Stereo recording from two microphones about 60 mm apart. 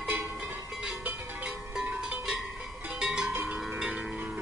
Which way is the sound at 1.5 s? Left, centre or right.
Centre.